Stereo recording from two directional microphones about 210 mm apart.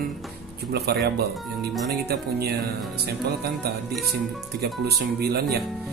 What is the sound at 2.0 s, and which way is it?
A man's voice, 50° right (ahead or behind).